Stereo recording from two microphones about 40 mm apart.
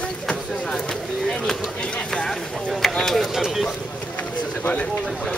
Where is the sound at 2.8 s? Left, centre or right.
Centre.